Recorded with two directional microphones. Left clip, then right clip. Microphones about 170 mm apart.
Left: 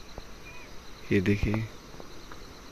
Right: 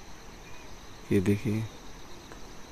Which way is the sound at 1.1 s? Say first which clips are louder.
Left 1 dB; 10° right (ahead or behind).